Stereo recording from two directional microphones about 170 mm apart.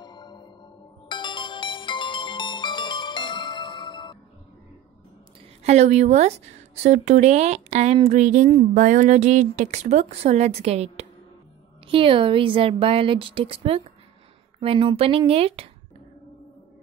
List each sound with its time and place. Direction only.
0.0 s music: 25° left (ahead or behind)
5.6 s a woman's voice: 40° right (ahead or behind)